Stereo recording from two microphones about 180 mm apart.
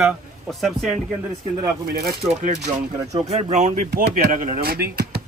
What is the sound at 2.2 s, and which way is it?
Speech, 40° right (ahead or behind).